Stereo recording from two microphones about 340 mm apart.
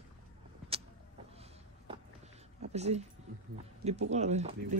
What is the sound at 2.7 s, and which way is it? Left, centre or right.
Speech, centre.